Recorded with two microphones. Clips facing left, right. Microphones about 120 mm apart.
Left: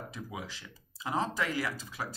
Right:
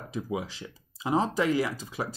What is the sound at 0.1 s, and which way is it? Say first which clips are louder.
Speech: right 9 dB; 20° right (ahead or behind).